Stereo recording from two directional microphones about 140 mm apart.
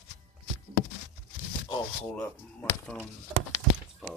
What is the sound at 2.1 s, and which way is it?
Speech, 10° left (ahead or behind).